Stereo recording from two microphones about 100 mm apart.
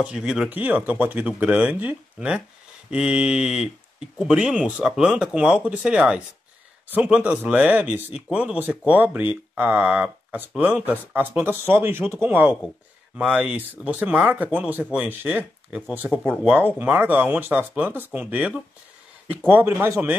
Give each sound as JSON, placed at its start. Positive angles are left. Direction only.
{"t": 0.0, "sound": "speech", "side_deg": -10}
{"t": 13.2, "sound": "speech", "side_deg": -5}